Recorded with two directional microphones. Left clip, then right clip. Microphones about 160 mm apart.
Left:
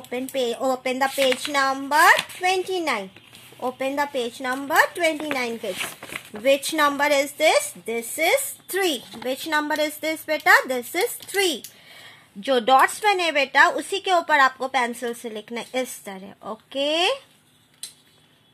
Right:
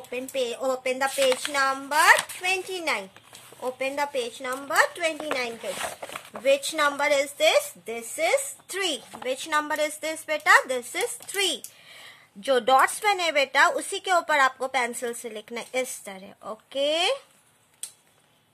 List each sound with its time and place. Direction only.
0.1 s speech: 55° left (ahead or behind)
8.2 s speech: 25° left (ahead or behind)
12.4 s a woman's voice: centre (ahead or behind)